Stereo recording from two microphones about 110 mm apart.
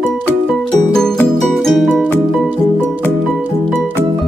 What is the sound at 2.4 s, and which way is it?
Music, 15° right (ahead or behind).